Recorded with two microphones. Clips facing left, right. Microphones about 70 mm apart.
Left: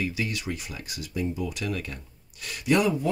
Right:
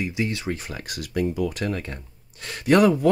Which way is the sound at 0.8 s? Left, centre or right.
Right.